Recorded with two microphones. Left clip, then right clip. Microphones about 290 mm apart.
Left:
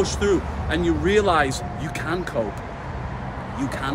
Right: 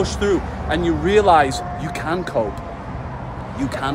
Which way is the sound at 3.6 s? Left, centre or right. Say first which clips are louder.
Right 4 dB; centre.